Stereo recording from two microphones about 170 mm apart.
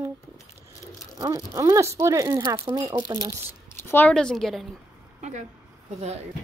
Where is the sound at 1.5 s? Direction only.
15° right (ahead or behind).